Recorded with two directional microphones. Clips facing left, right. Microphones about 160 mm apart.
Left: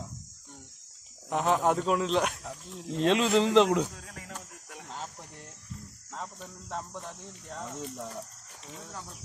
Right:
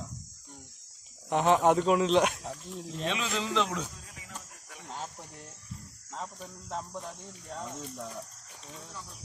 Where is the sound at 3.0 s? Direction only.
70° left (ahead or behind).